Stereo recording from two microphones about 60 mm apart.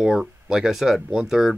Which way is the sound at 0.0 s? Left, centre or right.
Centre.